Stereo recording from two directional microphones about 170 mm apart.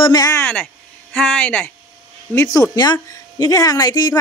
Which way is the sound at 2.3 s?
20° left (ahead or behind).